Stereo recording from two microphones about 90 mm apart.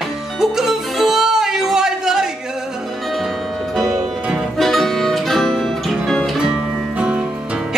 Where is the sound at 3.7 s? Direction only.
Centre (ahead or behind).